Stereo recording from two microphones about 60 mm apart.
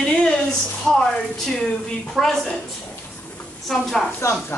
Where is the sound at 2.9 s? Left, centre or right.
Left.